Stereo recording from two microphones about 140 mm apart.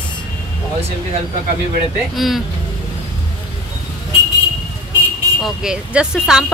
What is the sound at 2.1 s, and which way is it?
Speech, centre (ahead or behind).